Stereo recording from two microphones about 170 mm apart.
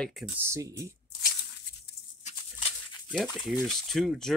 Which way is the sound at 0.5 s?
15° right (ahead or behind).